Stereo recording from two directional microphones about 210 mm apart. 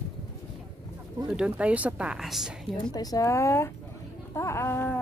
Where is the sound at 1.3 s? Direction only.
5° right (ahead or behind).